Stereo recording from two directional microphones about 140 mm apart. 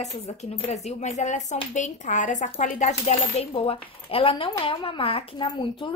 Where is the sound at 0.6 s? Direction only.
50° left (ahead or behind).